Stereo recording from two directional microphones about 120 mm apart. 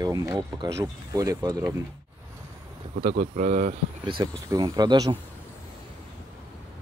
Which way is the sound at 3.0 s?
80° right.